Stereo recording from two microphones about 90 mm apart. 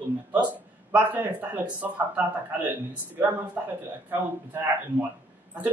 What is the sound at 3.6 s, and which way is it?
A man's voice, 20° right (ahead or behind).